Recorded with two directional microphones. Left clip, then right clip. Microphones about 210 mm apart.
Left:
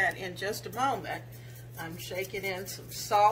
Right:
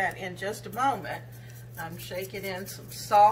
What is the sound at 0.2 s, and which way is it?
A woman's voice, 20° left (ahead or behind).